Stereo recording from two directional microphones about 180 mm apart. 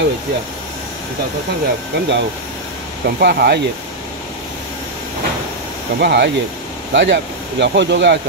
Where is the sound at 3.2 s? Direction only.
65° right (ahead or behind).